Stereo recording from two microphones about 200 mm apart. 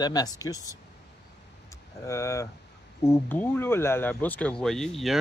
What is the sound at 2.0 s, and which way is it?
Speech, 15° left (ahead or behind).